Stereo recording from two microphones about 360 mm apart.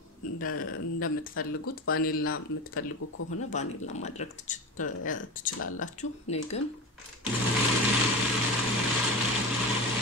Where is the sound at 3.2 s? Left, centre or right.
Left.